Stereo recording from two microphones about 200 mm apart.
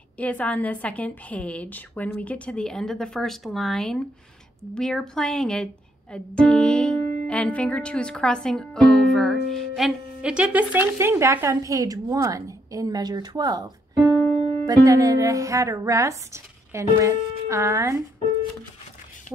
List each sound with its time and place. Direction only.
0.2 s a woman's voice: 5° left (ahead or behind); by 17.9 s 15° right (ahead or behind)